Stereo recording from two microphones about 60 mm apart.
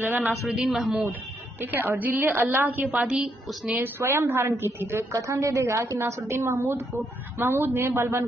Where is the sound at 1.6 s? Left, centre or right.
Right.